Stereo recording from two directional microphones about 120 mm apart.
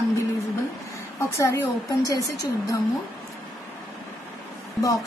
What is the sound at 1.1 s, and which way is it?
A woman's voice, 25° left (ahead or behind).